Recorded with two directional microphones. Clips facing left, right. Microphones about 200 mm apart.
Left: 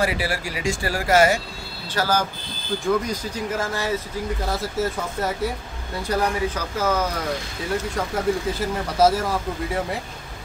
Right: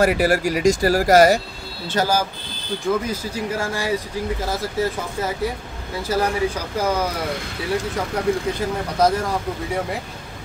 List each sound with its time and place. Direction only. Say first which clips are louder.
0.0 s speech: right 7 dB; 45° right (ahead or behind)
2.0 s speech: right 3 dB; 20° right (ahead or behind)
2.9 s speech: right 1 dB; 10° right (ahead or behind)
4.5 s speech: right 1 dB; centre (ahead or behind)
6.0 s speech: right 2 dB; 10° right (ahead or behind)
7.9 s speech: right 1 dB; 5° left (ahead or behind)